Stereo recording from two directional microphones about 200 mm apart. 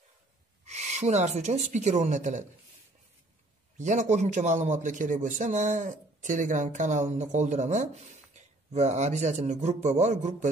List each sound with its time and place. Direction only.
0.7 s a man's voice: 35° right (ahead or behind)
3.7 s a man's voice: 40° right (ahead or behind)